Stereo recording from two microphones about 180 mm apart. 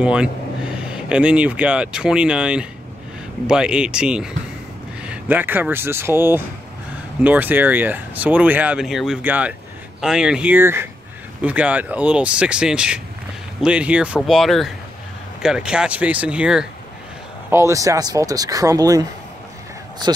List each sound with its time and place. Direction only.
0.0 s speech: 5° right (ahead or behind)
17.5 s speech: 15° right (ahead or behind)